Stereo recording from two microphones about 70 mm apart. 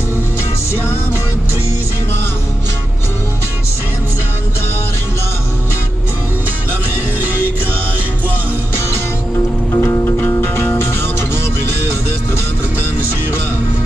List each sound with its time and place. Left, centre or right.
9.8 s music: left